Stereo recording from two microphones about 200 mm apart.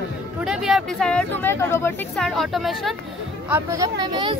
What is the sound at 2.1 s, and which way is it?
Speech, centre (ahead or behind).